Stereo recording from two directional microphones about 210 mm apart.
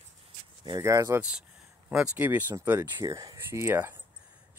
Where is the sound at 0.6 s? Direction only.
20° right (ahead or behind).